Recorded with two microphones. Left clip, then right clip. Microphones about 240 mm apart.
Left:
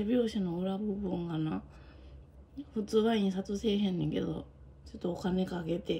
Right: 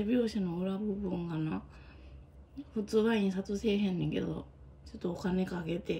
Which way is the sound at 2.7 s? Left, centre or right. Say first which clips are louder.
Left 1 dB; centre.